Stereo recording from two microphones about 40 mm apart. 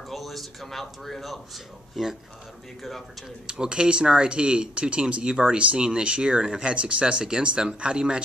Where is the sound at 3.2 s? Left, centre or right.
Right.